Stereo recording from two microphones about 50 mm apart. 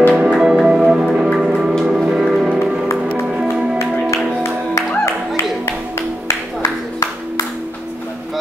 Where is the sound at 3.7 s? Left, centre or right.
Left.